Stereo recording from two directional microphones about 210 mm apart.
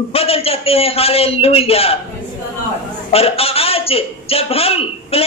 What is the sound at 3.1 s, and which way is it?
A man's voice, 25° left (ahead or behind).